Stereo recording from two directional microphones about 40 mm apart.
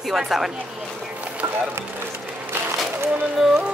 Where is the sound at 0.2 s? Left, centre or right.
Centre.